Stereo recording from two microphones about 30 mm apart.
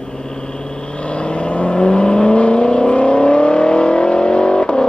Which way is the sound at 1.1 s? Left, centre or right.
Left.